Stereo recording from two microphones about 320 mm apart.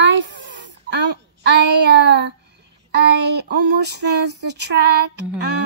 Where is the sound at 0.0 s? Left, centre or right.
Right.